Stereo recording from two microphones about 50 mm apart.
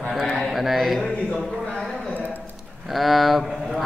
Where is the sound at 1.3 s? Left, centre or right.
Left.